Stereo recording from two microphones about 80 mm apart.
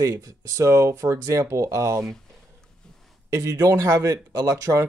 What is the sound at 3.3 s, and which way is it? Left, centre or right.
Speech, right.